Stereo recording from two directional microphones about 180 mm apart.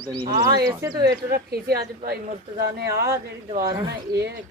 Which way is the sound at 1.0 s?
60° right (ahead or behind).